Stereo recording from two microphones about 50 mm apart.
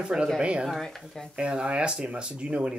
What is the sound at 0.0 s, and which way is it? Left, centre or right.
Speech, centre.